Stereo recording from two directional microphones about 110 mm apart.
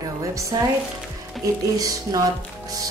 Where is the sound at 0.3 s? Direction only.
30° right (ahead or behind).